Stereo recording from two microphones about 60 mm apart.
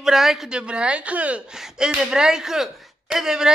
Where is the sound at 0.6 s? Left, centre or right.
Centre.